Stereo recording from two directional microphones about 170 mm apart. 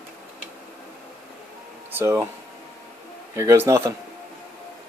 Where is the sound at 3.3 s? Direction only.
15° right (ahead or behind).